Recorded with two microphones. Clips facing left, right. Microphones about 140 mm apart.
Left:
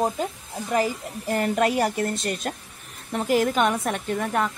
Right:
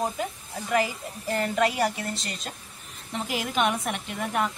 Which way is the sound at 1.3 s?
50° left (ahead or behind).